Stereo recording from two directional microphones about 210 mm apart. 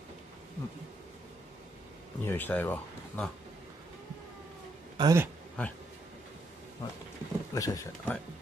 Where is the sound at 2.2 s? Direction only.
10° left (ahead or behind).